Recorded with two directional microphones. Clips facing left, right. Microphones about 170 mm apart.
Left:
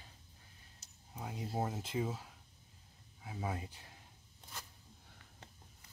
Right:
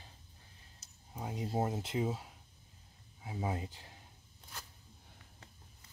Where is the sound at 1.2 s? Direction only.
20° right (ahead or behind).